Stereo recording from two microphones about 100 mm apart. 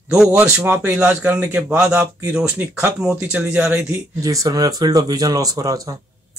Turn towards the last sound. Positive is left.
turn(degrees=-40)  # may be behind; listen again after turning